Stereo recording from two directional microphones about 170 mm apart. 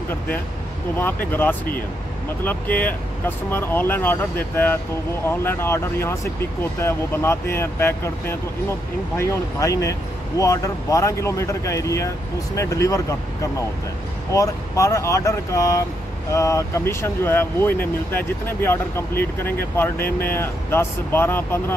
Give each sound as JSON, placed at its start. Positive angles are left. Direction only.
{"t": 0.9, "sound": "speech", "side_deg": 10}
{"t": 5.3, "sound": "speech", "side_deg": 15}
{"t": 14.3, "sound": "speech", "side_deg": 20}